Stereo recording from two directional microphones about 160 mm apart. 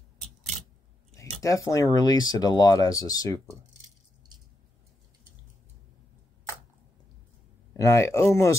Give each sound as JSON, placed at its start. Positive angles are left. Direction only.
{"t": 1.4, "sound": "speech", "side_deg": 20}
{"t": 7.7, "sound": "speech", "side_deg": 20}